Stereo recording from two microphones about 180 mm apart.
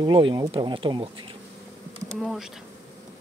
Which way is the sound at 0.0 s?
25° right (ahead or behind).